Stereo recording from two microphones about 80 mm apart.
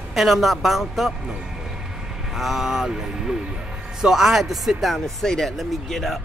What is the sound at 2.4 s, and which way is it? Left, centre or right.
Speech, centre.